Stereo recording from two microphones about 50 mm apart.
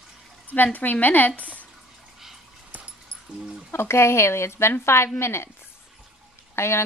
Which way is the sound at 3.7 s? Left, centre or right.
Left.